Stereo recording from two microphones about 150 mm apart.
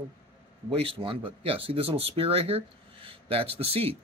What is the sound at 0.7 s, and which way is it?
Speech, 40° right (ahead or behind).